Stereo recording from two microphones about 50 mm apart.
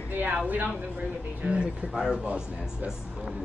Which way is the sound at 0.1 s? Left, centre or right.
Right.